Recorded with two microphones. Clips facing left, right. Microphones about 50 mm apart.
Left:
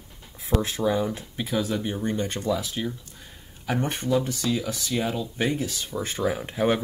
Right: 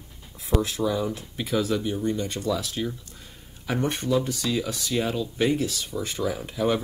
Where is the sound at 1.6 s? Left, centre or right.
Left.